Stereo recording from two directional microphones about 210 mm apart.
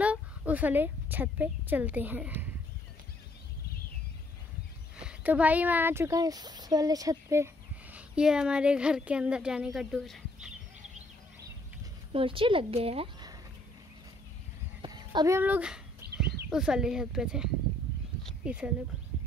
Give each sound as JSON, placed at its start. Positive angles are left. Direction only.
{"t": 0.0, "sound": "speech", "side_deg": -5}
{"t": 4.9, "sound": "speech", "side_deg": -5}
{"t": 12.1, "sound": "speech", "side_deg": -25}
{"t": 14.8, "sound": "a child's voice", "side_deg": -20}
{"t": 16.0, "sound": "a sound", "side_deg": -50}
{"t": 16.4, "sound": "speech", "side_deg": -5}
{"t": 18.2, "sound": "a sound", "side_deg": -5}